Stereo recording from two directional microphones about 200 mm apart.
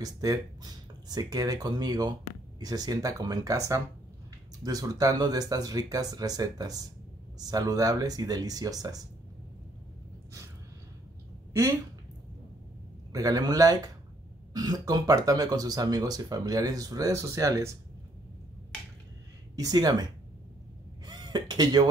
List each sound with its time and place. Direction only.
0.0 s speech: 20° right (ahead or behind)
13.1 s speech: 20° right (ahead or behind)
19.5 s speech: 20° right (ahead or behind)
21.0 s a sound: 20° right (ahead or behind)